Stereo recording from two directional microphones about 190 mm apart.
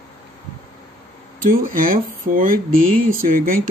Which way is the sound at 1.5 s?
45° right (ahead or behind).